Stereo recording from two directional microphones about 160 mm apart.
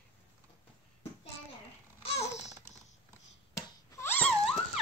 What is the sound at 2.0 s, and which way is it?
Babbling, 40° left (ahead or behind).